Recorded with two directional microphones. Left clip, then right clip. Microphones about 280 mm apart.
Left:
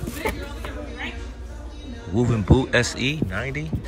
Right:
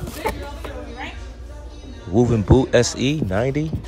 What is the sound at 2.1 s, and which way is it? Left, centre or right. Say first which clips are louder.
Speech: right 5 dB; centre.